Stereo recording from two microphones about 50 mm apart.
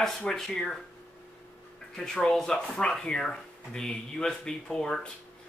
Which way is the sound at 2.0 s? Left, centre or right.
Centre.